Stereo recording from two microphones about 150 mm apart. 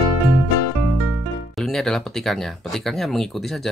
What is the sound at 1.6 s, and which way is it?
Speech, 5° left (ahead or behind).